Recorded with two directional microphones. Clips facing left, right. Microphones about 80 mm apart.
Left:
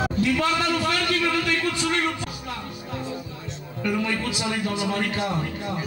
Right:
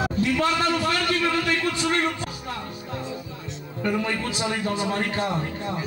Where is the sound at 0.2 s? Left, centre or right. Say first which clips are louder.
Even; right.